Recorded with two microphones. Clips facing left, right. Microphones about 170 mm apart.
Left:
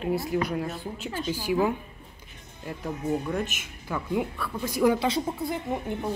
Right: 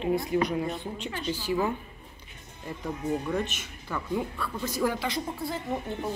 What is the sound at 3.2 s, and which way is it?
Speech, 5° left (ahead or behind).